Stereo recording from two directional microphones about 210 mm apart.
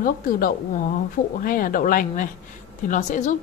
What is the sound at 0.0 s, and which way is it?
A woman's voice, 40° left (ahead or behind).